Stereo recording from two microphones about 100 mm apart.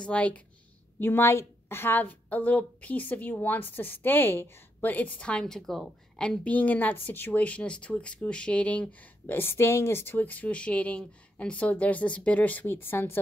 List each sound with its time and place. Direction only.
0.0 s a woman's voice: 15° left (ahead or behind)